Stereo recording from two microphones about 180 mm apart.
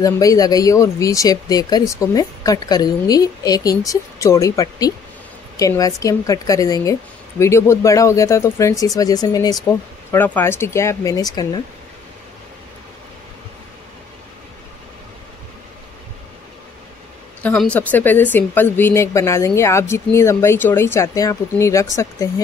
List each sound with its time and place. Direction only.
0.0 s a woman's voice: 20° left (ahead or behind)
17.4 s a woman's voice: 5° left (ahead or behind)